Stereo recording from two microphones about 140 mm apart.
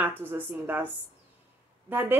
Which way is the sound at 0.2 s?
15° right (ahead or behind).